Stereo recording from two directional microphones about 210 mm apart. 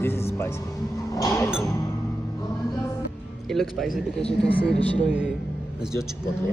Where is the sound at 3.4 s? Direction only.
Centre (ahead or behind).